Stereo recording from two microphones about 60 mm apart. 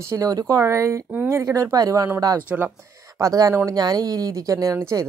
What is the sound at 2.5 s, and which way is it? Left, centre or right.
Speech, right.